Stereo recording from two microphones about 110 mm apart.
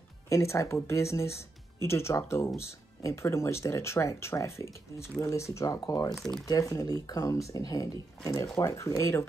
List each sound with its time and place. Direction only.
0.3 s speech: 25° left (ahead or behind)
6.1 s speech: 5° left (ahead or behind)
6.4 s speech: 35° left (ahead or behind)